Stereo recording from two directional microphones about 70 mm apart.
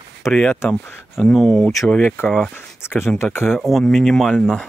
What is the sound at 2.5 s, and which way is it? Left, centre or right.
Speech, left.